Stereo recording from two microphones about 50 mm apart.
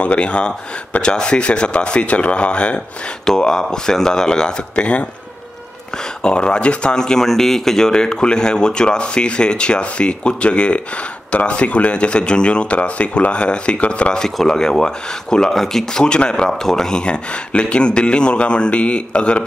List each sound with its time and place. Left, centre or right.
0.0 s speech: left
6.2 s speech: centre
14.1 s speech: centre